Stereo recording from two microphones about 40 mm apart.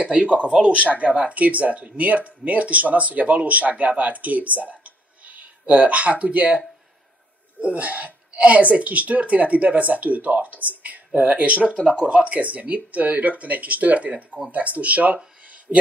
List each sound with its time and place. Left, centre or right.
0.0 s speech: right
7.6 s speech: right
11.8 s speech: centre
12.4 s speech: right
14.1 s speech: centre
14.5 s speech: right
15.7 s speech: centre